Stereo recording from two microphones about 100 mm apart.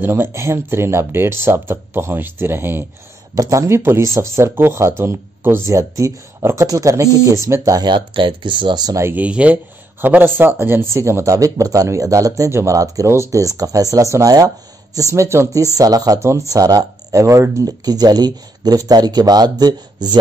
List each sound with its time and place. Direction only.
0.0 s speech: 25° right (ahead or behind)
7.9 s speech: 55° right (ahead or behind)
9.1 s speech: 15° right (ahead or behind); by 20.2 s 45° right (ahead or behind)